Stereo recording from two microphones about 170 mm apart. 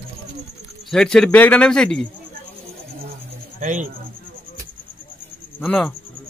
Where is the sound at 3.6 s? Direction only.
50° right (ahead or behind).